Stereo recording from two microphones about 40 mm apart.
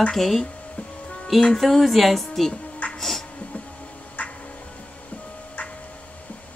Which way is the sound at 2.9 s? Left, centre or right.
Centre.